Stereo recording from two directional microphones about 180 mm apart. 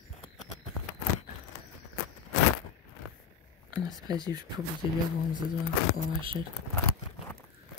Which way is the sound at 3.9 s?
20° right (ahead or behind).